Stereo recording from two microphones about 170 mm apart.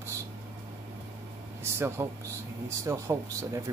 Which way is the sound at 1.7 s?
15° right (ahead or behind).